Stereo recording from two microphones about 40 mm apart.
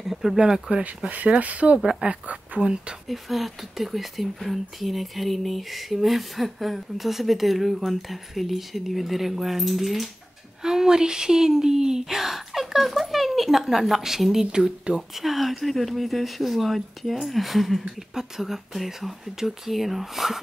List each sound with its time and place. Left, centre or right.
0.0 s a sound: centre
0.4 s speech: right
1.4 s speech: right
1.8 s speech: centre
2.0 s speech: right
2.6 s speech: right
3.1 s speech: centre
10.6 s speech: centre
15.0 s speech: centre